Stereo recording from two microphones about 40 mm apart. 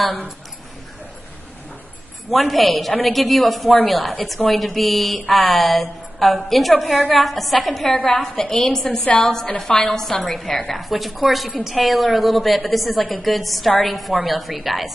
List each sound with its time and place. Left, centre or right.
2.3 s a woman's voice: centre
8.8 s a woman's voice: left
9.2 s a woman's voice: centre